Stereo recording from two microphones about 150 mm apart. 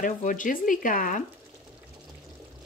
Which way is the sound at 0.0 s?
60° left (ahead or behind).